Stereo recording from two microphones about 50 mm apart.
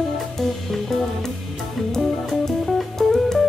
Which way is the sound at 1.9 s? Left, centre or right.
Centre.